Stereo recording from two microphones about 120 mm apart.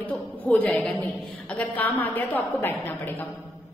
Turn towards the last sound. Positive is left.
turn(degrees=15)  # may be behind; listen again after turning